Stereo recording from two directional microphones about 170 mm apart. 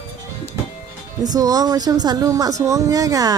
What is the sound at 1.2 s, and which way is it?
Speech, 20° right (ahead or behind).